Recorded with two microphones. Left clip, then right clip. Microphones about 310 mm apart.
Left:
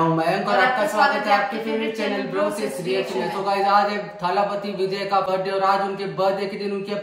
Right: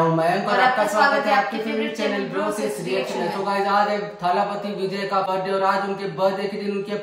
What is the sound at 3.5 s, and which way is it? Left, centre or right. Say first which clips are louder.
Speech: left 2 dB; centre.